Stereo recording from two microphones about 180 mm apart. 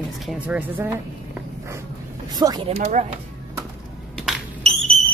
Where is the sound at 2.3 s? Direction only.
20° right (ahead or behind).